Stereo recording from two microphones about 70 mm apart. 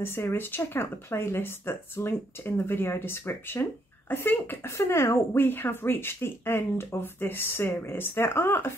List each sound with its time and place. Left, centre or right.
0.0 s speech: left
4.6 s speech: left